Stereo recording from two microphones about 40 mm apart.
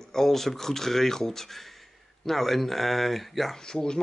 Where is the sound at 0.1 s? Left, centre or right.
Centre.